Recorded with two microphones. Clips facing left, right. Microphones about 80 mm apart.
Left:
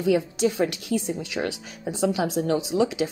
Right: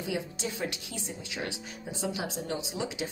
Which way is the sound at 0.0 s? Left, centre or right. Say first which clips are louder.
Left 12 dB; left.